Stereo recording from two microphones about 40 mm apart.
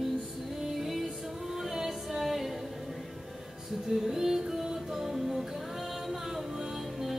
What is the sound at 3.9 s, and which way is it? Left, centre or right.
Music, centre.